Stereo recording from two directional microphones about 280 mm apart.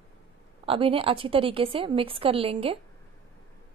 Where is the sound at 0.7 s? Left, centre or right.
Centre.